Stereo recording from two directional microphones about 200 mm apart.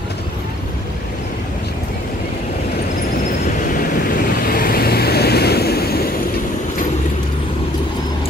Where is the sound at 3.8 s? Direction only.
45° left (ahead or behind).